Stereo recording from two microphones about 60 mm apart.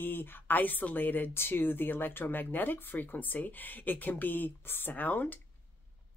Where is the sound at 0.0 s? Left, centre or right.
Left.